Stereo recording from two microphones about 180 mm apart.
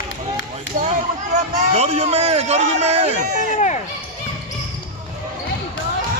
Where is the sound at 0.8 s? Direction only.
40° right (ahead or behind).